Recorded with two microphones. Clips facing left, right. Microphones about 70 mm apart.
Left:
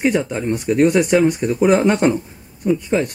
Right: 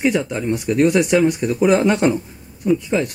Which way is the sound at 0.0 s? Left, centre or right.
Centre.